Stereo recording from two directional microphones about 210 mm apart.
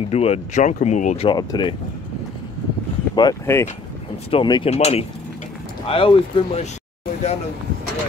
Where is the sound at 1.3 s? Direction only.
20° left (ahead or behind).